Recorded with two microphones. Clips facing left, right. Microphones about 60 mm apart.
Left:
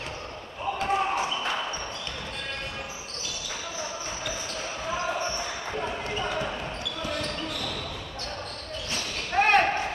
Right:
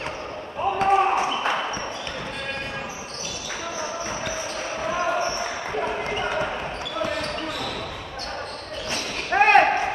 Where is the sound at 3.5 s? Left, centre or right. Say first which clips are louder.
Right 6 dB; right.